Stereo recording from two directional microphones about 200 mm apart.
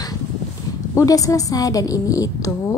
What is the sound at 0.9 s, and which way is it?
Speech, 15° left (ahead or behind).